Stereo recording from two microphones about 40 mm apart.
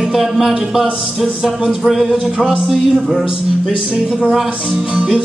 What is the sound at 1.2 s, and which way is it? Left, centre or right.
Music, centre.